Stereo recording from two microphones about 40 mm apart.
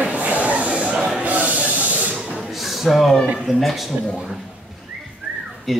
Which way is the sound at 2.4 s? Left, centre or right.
Centre.